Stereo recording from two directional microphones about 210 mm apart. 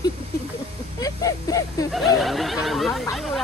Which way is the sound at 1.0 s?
15° left (ahead or behind).